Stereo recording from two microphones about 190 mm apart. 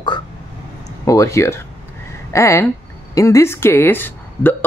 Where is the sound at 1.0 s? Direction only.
15° left (ahead or behind).